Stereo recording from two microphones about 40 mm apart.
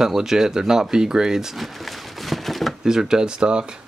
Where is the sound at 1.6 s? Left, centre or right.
Centre.